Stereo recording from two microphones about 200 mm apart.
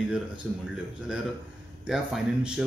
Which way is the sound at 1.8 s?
Centre (ahead or behind).